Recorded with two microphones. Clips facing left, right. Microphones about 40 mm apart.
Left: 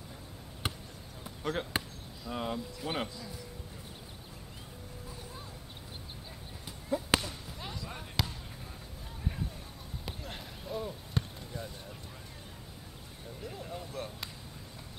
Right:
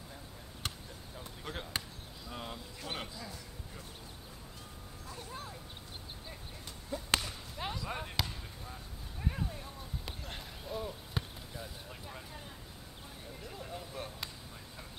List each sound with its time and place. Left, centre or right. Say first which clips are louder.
0.6 s basketball bounce: left 4 dB; centre
2.2 s speech: left 8 dB; centre
6.9 s a sound: left 4 dB; centre
7.2 s basketball bounce: right 2 dB; centre
8.2 s basketball bounce: left 3 dB; centre
10.0 s basketball bounce: left 2 dB; centre
13.4 s a sound: left 3 dB; centre